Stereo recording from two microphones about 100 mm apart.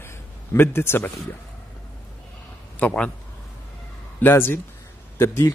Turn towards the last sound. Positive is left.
turn(degrees=25)  # may be behind; listen again after turning